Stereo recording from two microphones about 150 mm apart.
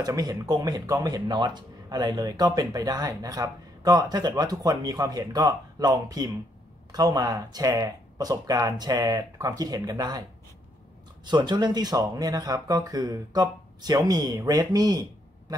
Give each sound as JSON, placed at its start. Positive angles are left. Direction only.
{"t": 0.0, "sound": "speech", "side_deg": -25}
{"t": 11.2, "sound": "speech", "side_deg": -30}